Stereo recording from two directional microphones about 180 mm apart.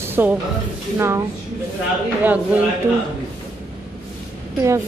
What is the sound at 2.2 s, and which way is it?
Speech, 10° right (ahead or behind).